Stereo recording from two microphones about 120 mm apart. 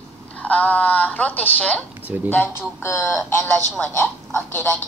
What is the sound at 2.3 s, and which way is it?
Speech, 20° left (ahead or behind).